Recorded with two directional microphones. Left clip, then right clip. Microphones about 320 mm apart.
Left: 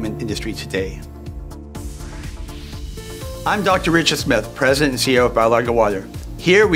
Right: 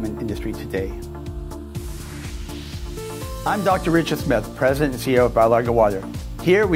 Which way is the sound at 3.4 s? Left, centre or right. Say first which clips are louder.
Left 3 dB; right.